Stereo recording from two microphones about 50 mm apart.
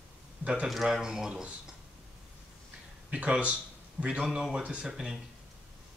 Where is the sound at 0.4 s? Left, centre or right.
Right.